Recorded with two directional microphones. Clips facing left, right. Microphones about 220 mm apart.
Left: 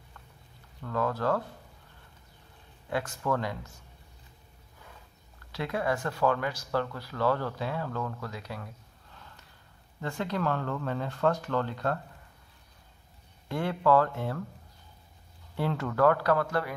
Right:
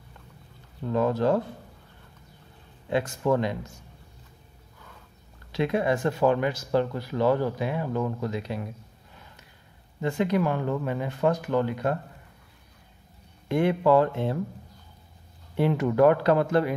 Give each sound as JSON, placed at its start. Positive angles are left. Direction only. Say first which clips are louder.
{"t": 0.8, "sound": "speech", "louder": "right 6 dB", "side_deg": -20}
{"t": 2.9, "sound": "speech", "louder": "right 6 dB", "side_deg": -20}
{"t": 5.5, "sound": "speech", "louder": "right 6 dB", "side_deg": -20}
{"t": 13.5, "sound": "speech", "louder": "right 5 dB", "side_deg": -20}
{"t": 15.5, "sound": "speech", "louder": "right 7 dB", "side_deg": -20}